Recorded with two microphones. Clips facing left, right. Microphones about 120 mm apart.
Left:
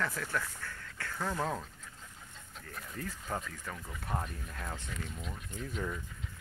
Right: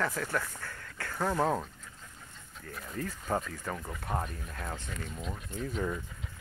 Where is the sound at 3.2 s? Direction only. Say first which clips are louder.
Right 7 dB; 30° right (ahead or behind).